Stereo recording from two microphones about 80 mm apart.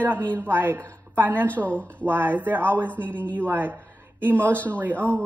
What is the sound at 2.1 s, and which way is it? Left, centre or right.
A woman's voice, right.